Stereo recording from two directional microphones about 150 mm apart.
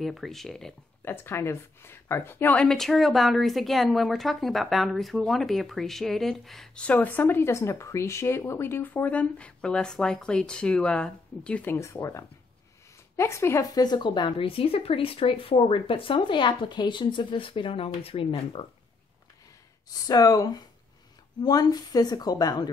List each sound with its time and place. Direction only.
0.0 s speech: centre (ahead or behind)
1.0 s speech: 15° left (ahead or behind); by 18.7 s 40° left (ahead or behind)
19.9 s speech: 25° left (ahead or behind)